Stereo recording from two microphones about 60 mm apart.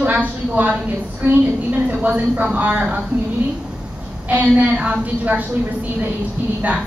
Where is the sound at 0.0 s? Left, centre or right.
Right.